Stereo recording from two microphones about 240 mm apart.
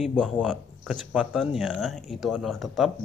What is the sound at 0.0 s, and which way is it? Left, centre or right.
Speech, centre.